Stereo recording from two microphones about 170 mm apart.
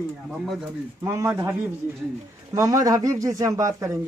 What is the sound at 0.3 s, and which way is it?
Speech, 5° right (ahead or behind).